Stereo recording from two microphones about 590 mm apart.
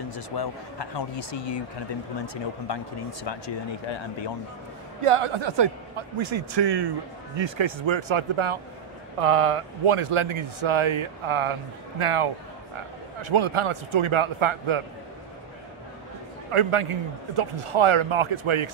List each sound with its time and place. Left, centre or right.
0.1 s speech: left
5.0 s a man's voice: right
16.4 s a man's voice: right